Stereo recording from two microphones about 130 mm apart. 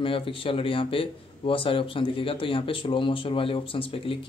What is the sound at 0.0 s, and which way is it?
Speech, 45° left (ahead or behind).